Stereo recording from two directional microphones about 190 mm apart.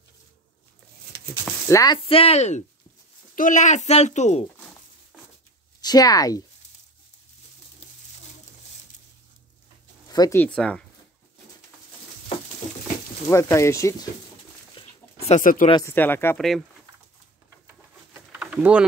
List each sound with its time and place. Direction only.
1.4 s speech: 15° left (ahead or behind)
2.0 s speech: 30° left (ahead or behind)
5.8 s speech: 20° left (ahead or behind)
10.0 s speech: 20° left (ahead or behind)
10.4 s speech: 5° left (ahead or behind)
12.3 s a sound: 30° left (ahead or behind)
13.3 s speech: 15° left (ahead or behind)
14.7 s dog: 30° left (ahead or behind)
15.7 s speech: 15° left (ahead or behind)
18.3 s a sound: 5° right (ahead or behind)